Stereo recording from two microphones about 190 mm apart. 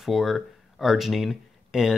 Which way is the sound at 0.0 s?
Centre (ahead or behind).